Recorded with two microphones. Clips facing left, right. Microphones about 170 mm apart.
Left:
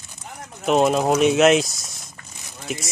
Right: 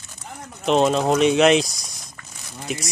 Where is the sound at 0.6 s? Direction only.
5° left (ahead or behind).